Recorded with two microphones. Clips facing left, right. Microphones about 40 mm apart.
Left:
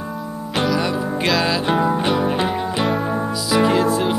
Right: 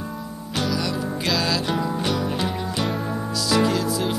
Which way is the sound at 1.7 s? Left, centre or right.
Left.